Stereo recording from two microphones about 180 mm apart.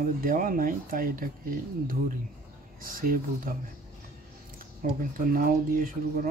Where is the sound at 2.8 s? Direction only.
50° right (ahead or behind).